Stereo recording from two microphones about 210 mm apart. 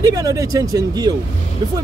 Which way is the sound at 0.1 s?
15° right (ahead or behind).